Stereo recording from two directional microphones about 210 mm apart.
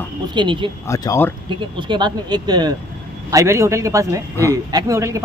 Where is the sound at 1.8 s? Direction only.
20° right (ahead or behind).